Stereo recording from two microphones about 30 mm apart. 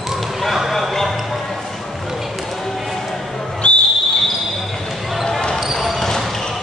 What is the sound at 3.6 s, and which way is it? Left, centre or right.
Whistle, left.